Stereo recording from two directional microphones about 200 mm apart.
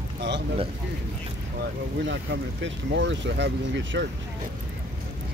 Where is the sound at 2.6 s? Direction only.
65° right (ahead or behind).